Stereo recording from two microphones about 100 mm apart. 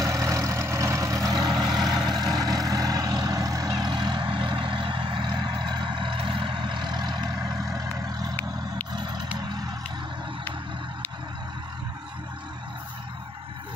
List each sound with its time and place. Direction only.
0.0 s vehicle: 35° right (ahead or behind)
3.9 s vehicle: 45° right (ahead or behind)